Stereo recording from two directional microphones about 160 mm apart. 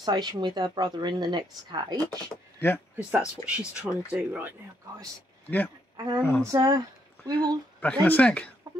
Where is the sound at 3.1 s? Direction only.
5° right (ahead or behind).